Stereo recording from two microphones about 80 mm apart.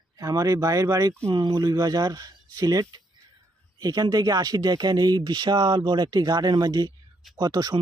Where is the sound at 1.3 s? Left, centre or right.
Right.